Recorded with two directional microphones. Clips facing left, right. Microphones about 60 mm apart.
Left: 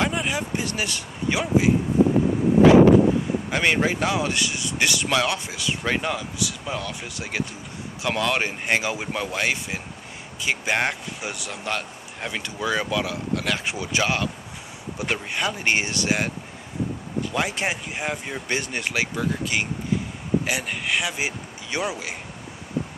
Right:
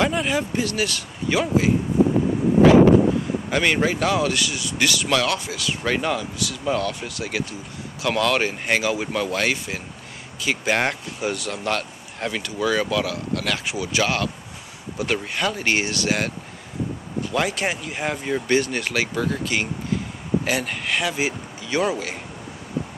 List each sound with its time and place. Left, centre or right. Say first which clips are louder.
0.0 s speech: right 3 dB; centre
3.4 s speech: right 2 dB; centre
5.9 s speech: right 2 dB; centre
7.2 s speech: right 2 dB; left
12.4 s speech: right 3 dB; left